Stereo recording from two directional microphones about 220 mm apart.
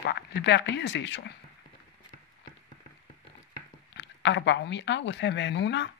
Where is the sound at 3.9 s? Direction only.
55° left (ahead or behind).